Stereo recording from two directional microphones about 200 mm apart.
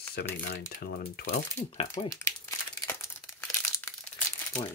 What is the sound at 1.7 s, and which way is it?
Speech, 30° left (ahead or behind).